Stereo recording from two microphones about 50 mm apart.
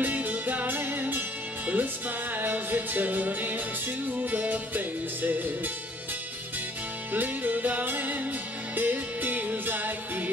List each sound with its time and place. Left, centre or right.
0.0 s music: right
7.1 s music: right